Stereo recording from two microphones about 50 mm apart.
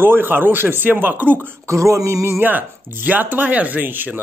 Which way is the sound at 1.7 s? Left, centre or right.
Right.